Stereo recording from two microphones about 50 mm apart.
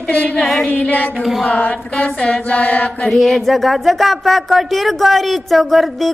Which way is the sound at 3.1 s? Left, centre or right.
Centre.